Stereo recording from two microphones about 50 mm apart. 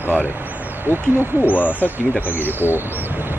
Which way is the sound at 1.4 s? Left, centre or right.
Left.